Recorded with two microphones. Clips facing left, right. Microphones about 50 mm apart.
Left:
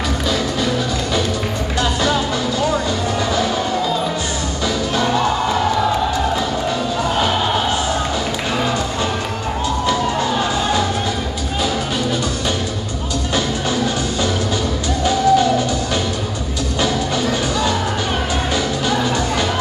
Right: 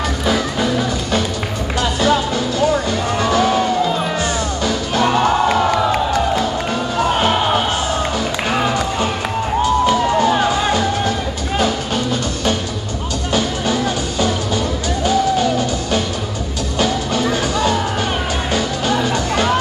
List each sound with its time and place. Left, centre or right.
1.8 s music: right
3.2 s music: right
4.6 s music: right
8.5 s run: right
16.8 s music: right